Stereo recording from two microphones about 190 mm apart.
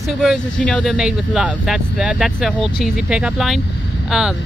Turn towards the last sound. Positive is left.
turn(degrees=-5)  # may be behind; listen again after turning